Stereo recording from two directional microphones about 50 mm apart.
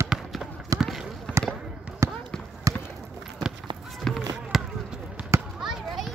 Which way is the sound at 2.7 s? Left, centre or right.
Right.